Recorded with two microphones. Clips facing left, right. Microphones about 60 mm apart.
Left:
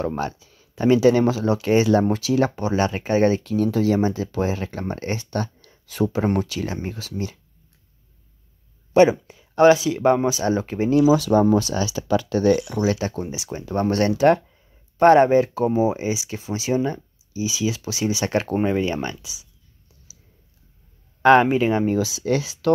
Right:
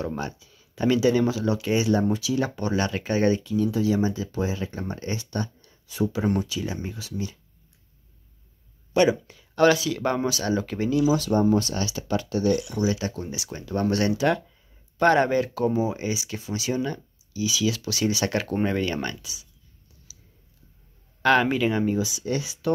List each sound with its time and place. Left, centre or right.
0.0 s speech: left
1.9 s speech: left
2.7 s speech: left
3.4 s speech: left
5.3 s a sound: left
6.3 s speech: left
8.9 s speech: left
11.3 s speech: left
13.0 s speech: left
13.7 s speech: left
15.0 s speech: left
18.6 s speech: centre
21.2 s speech: left
21.9 s speech: left